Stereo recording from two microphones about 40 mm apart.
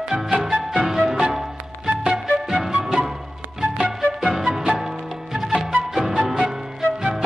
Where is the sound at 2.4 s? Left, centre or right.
Centre.